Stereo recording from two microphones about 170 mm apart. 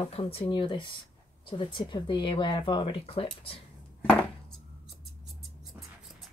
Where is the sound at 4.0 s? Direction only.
10° left (ahead or behind).